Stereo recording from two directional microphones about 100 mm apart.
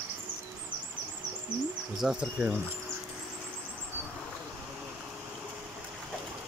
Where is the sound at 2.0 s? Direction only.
5° right (ahead or behind).